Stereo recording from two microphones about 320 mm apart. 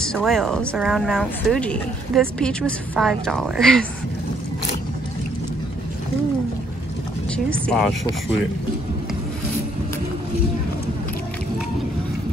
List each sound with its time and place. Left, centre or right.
0.0 s speech: centre
7.3 s speech: centre